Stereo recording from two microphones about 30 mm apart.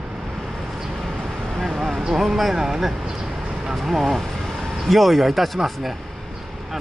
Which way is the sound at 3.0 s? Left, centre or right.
Right.